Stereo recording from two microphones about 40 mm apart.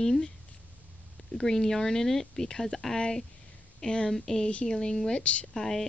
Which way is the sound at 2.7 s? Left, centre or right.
Centre.